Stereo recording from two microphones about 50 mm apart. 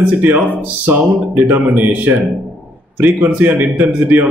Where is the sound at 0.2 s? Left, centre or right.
Right.